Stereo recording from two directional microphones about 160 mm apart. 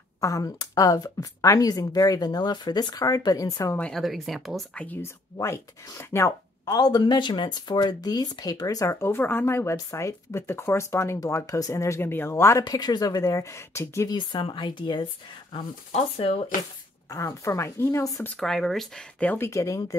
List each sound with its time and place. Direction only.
0.2 s speech: 20° left (ahead or behind)
3.8 s speech: centre (ahead or behind); by 14.1 s 15° left (ahead or behind)
14.1 s speech: 30° left (ahead or behind)
17.1 s speech: 20° left (ahead or behind)
18.3 s speech: 5° left (ahead or behind); by 20.0 s 20° left (ahead or behind)